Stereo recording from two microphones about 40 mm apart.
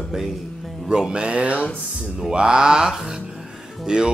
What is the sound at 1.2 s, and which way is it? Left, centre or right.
Speech, right.